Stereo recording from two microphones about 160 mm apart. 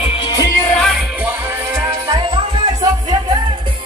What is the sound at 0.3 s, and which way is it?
Music, 20° left (ahead or behind).